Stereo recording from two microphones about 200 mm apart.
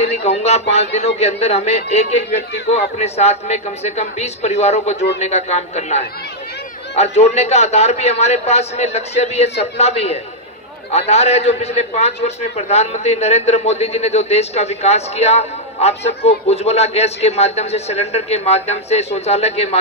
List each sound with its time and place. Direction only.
0.0 s a man's voice: 30° left (ahead or behind)